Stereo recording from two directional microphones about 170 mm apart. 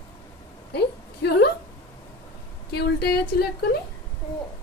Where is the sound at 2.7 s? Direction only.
70° left (ahead or behind).